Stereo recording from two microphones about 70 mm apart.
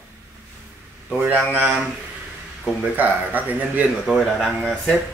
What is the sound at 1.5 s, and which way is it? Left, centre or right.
Speech, right.